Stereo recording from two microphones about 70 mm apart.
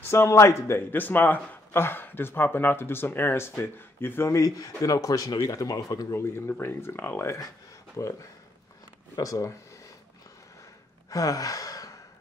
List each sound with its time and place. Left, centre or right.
0.1 s a man's voice: left
4.3 s speech: left
6.0 s a man's voice: left
9.2 s speech: left
11.1 s sigh: left